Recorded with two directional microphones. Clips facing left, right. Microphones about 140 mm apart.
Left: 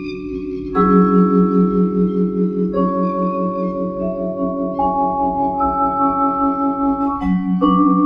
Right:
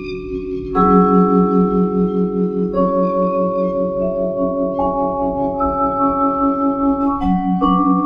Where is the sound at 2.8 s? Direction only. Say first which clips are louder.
Right 3 dB; 15° right (ahead or behind).